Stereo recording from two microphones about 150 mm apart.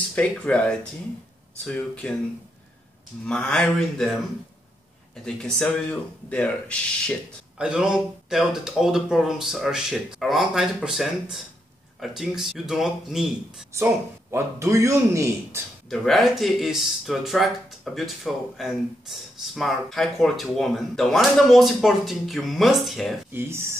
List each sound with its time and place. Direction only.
0.1 s speech: 5° left (ahead or behind)
3.3 s speech: 5° left (ahead or behind)
7.5 s speech: 5° right (ahead or behind)
14.3 s a man's voice: 20° right (ahead or behind)
15.9 s speech: centre (ahead or behind)
23.3 s speech: 15° right (ahead or behind)